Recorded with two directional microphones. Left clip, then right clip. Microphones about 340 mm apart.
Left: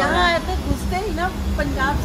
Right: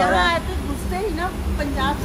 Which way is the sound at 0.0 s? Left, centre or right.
Left.